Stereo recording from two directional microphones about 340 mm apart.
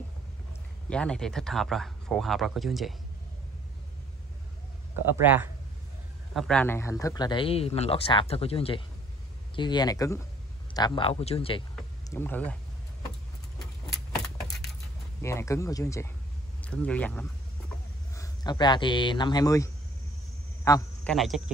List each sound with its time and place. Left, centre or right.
0.8 s speech: centre
5.1 s speech: centre
11.7 s a sound: centre
13.9 s keys jangling: centre
15.2 s a man's voice: centre